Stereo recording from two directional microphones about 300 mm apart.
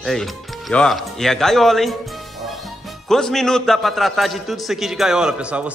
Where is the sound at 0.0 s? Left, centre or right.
Centre.